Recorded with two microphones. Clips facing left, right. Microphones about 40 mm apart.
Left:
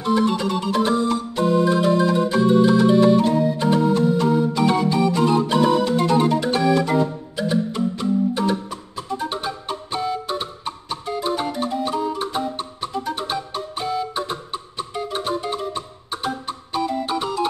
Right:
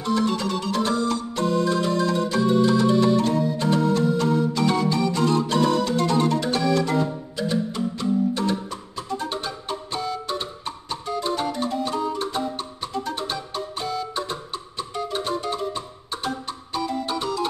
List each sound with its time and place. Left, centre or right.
0.0 s organ: centre